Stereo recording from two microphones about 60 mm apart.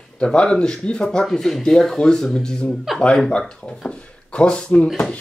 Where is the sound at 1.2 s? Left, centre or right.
Centre.